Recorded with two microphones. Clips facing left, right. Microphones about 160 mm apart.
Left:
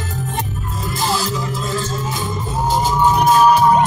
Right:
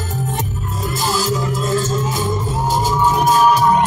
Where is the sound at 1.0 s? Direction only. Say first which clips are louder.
Right 2 dB; 40° right (ahead or behind).